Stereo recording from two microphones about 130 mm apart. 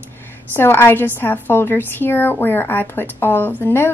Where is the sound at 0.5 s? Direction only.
15° left (ahead or behind).